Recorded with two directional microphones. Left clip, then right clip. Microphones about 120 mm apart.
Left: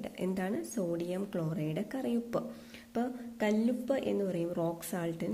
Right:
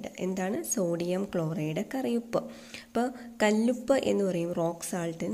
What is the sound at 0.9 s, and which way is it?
A woman's voice, 30° right (ahead or behind).